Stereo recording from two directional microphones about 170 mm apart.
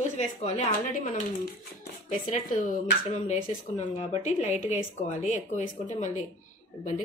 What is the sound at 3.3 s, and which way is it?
Speech, 45° left (ahead or behind).